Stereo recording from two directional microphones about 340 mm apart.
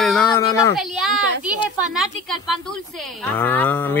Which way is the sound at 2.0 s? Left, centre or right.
Centre.